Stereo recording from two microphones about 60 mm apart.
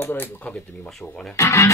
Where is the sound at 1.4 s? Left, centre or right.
Left.